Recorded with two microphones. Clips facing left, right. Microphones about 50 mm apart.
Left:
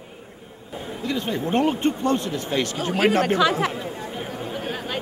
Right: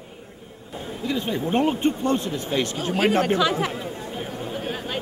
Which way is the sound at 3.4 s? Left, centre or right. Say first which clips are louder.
Left 2 dB; left.